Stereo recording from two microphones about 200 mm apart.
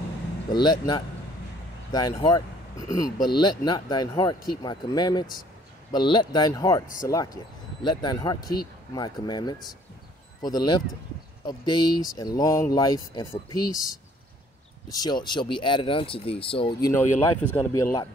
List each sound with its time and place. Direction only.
0.5 s a man's voice: 20° left (ahead or behind)
14.9 s speech: 20° left (ahead or behind)
16.9 s a man's voice: 10° left (ahead or behind)